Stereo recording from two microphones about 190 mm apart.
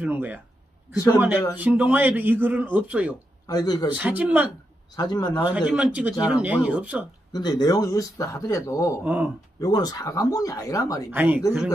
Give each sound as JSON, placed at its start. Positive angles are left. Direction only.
{"t": 0.0, "sound": "a man's voice", "side_deg": -10}
{"t": 3.4, "sound": "speech", "side_deg": 20}
{"t": 4.0, "sound": "a man's voice", "side_deg": -10}
{"t": 4.9, "sound": "speech", "side_deg": 20}
{"t": 5.5, "sound": "a man's voice", "side_deg": -5}
{"t": 7.3, "sound": "speech", "side_deg": 20}
{"t": 9.0, "sound": "speech", "side_deg": -5}
{"t": 9.6, "sound": "speech", "side_deg": 20}
{"t": 11.1, "sound": "a man's voice", "side_deg": -10}